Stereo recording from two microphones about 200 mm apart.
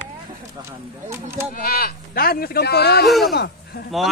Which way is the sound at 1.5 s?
45° left (ahead or behind).